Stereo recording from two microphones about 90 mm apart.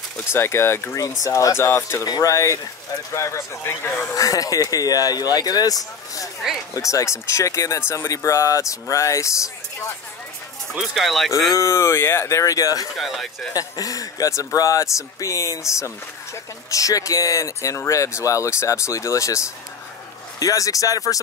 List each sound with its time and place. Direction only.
0.3 s speech: 30° left (ahead or behind)
2.0 s speech: 40° left (ahead or behind)
10.7 s speech: centre (ahead or behind)
11.5 s speech: 35° left (ahead or behind)
12.9 s speech: centre (ahead or behind)
13.5 s speech: 45° left (ahead or behind)
16.7 s speech: 40° left (ahead or behind)